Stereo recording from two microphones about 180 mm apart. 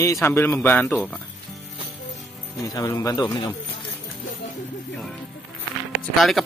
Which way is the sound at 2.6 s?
20° left (ahead or behind).